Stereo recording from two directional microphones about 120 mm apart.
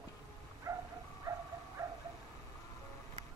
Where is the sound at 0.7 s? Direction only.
25° right (ahead or behind).